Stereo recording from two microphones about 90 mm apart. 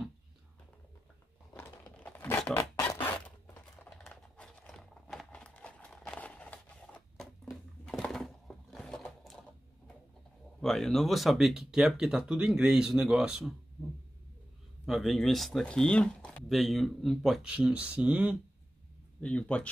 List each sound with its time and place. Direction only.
1.5 s crumpling: 20° left (ahead or behind)
3.0 s zipper: 20° left (ahead or behind)
3.8 s a sound: 10° left (ahead or behind)
7.2 s a sound: centre (ahead or behind)
10.6 s speech: 5° left (ahead or behind)
14.9 s speech: centre (ahead or behind)
16.4 s speech: centre (ahead or behind)
17.5 s speech: 10° right (ahead or behind)
19.2 s speech: 15° left (ahead or behind)